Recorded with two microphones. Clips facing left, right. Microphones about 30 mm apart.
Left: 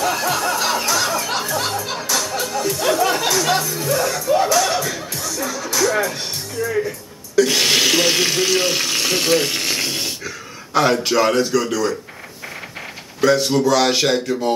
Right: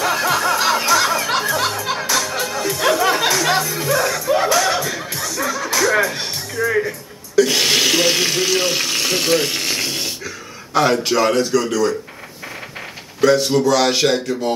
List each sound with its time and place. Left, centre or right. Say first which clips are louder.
0.0 s music: right 2 dB; centre
6.6 s music: right 3 dB; right
7.3 s water tap: right 1 dB; centre
13.2 s speech: right 1 dB; centre